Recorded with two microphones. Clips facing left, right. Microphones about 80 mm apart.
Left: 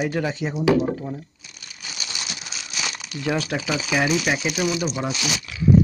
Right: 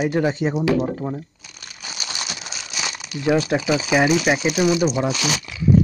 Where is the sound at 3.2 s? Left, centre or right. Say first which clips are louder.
Right 6 dB; right.